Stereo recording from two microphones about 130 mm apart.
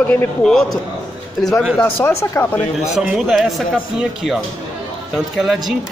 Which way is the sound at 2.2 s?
25° left (ahead or behind).